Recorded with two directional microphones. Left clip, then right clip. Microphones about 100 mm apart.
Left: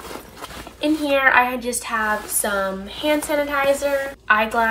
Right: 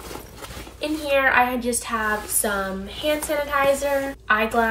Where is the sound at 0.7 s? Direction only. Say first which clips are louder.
Left 2 dB; 20° left (ahead or behind).